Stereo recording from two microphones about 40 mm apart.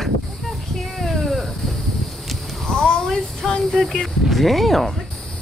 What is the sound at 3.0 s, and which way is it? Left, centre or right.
Speech, centre.